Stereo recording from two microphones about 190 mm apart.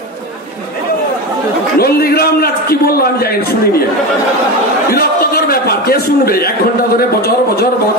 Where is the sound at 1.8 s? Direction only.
55° left (ahead or behind).